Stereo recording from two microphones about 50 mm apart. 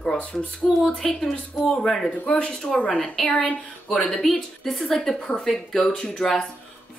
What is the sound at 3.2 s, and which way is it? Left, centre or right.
Speech, left.